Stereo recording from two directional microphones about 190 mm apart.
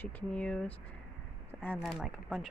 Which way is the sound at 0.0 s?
5° left (ahead or behind).